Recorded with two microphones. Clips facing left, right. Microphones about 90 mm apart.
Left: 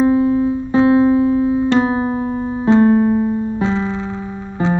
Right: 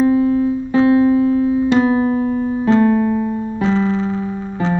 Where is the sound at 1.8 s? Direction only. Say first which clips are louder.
Right 2 dB; 30° left (ahead or behind).